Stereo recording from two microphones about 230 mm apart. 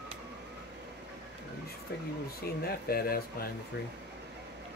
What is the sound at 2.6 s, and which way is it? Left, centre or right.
Speech, left.